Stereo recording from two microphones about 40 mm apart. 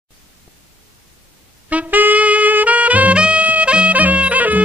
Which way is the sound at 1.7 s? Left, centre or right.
Right.